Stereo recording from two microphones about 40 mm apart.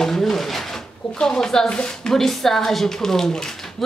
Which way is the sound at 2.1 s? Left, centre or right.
Centre.